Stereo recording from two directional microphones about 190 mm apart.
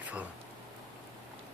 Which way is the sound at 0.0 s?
5° right (ahead or behind).